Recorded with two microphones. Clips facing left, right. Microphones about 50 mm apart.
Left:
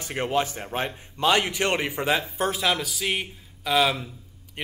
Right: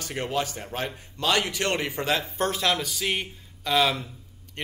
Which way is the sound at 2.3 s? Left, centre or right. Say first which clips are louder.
Left 1 dB; centre.